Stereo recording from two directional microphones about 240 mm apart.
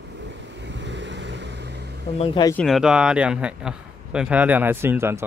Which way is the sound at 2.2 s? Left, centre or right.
Centre.